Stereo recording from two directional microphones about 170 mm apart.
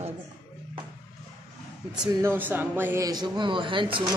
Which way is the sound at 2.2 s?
10° right (ahead or behind).